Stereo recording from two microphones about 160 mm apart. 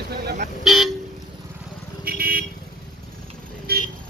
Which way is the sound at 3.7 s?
75° right (ahead or behind).